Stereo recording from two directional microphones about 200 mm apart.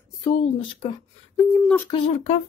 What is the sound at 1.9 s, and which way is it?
Speech, 25° left (ahead or behind).